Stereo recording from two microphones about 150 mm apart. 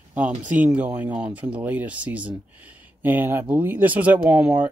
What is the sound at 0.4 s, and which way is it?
Speech, 10° right (ahead or behind).